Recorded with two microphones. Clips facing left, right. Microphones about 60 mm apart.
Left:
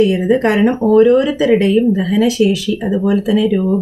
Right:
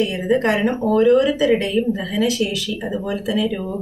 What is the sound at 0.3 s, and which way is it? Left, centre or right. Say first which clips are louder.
Speech: left 5 dB; left.